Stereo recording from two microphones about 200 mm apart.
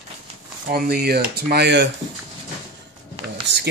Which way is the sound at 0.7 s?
50° right (ahead or behind).